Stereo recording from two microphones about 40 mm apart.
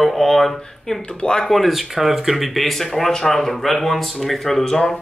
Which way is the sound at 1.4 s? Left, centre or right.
Centre.